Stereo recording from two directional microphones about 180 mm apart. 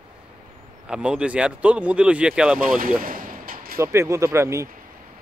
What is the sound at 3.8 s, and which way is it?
Speech, 15° right (ahead or behind).